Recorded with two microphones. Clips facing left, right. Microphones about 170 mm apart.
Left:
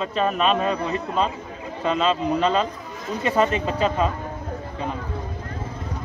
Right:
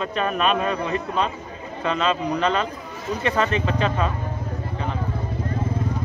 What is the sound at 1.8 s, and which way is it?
Speech, 5° left (ahead or behind).